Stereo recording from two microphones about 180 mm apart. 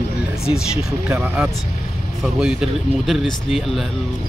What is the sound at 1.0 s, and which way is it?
Speech, 10° right (ahead or behind).